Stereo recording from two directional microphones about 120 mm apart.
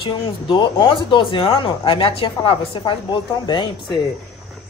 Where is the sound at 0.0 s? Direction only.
45° left (ahead or behind).